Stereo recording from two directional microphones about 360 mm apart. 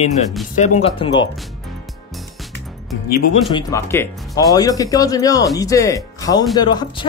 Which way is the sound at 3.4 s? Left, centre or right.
Centre.